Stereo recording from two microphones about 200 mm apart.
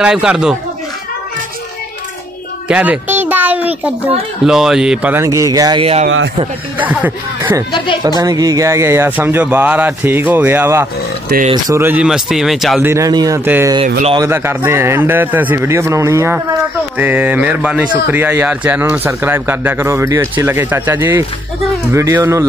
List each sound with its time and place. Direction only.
0.0 s speech: 5° right (ahead or behind)
2.7 s a child's voice: 10° right (ahead or behind); by 6.0 s 30° right (ahead or behind)
6.0 s a man's voice: 65° right (ahead or behind)
6.8 s a man's voice: 10° right (ahead or behind)
7.7 s a woman's voice: 25° left (ahead or behind)
8.2 s a man's voice: 20° right (ahead or behind); by 12.8 s centre (ahead or behind)
12.8 s a man's voice: 15° right (ahead or behind)